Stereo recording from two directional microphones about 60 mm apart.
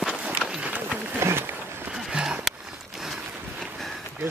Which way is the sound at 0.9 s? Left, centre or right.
Right.